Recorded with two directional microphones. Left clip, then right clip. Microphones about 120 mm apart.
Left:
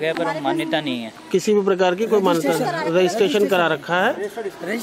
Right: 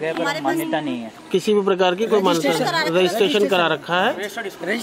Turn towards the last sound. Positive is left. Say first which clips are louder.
# right 1 dB
turn(degrees=0)  # may be behind; listen again after turning